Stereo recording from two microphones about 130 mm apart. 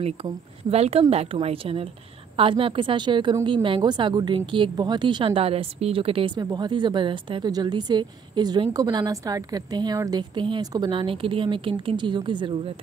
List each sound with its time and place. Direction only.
0.0 s a woman's voice: 50° right (ahead or behind); by 10.9 s 30° right (ahead or behind)
10.9 s a woman's voice: 45° right (ahead or behind)